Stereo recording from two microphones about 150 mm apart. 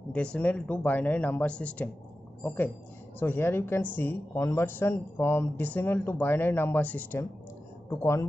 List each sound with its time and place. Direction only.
0.1 s speech: 10° left (ahead or behind)